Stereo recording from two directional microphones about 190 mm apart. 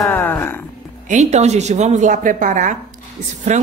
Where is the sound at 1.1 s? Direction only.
40° right (ahead or behind).